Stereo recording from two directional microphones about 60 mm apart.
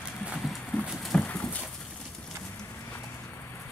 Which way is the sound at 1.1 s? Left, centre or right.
Centre.